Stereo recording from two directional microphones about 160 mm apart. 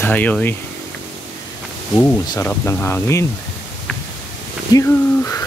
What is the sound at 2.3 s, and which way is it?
Speech, 15° left (ahead or behind).